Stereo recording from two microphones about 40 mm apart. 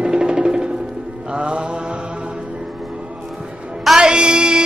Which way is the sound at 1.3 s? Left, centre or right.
Right.